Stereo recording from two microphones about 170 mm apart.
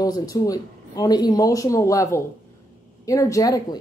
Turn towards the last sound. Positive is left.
turn(degrees=20)  # may be behind; listen again after turning